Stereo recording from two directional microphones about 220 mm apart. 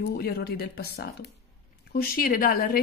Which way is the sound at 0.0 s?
45° left (ahead or behind).